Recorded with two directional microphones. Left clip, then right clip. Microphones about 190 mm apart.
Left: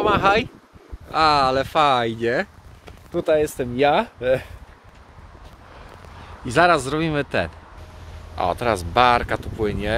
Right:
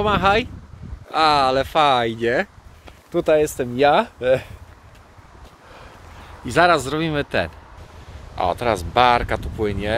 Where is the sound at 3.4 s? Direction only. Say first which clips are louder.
Right 2 dB; 15° right (ahead or behind).